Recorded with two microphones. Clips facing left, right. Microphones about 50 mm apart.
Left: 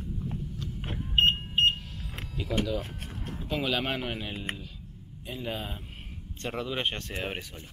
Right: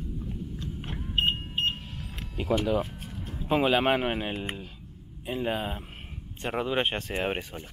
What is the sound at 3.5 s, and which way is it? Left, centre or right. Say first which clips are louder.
Speech: right 7 dB; right.